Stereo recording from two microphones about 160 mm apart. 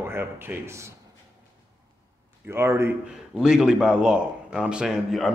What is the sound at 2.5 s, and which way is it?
A man's voice, 15° right (ahead or behind).